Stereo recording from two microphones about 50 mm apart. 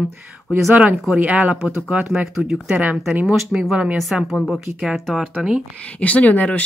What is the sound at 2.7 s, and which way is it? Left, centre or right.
Speech, right.